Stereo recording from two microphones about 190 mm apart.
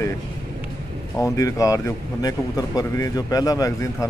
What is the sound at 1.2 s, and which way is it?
Speech, 15° left (ahead or behind).